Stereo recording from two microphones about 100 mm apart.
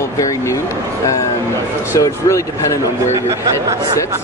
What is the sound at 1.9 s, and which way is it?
Speech, 35° left (ahead or behind).